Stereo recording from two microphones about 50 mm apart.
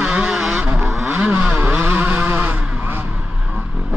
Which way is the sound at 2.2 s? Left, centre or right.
Right.